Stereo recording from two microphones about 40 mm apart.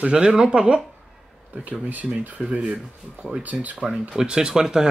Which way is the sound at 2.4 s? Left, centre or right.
Centre.